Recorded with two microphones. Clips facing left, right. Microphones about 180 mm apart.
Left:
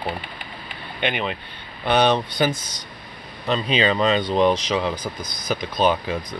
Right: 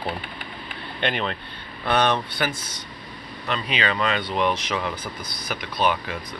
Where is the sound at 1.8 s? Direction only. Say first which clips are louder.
Left 3 dB; 20° left (ahead or behind).